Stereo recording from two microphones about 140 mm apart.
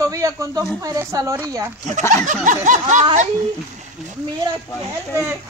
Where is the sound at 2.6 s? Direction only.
60° right (ahead or behind).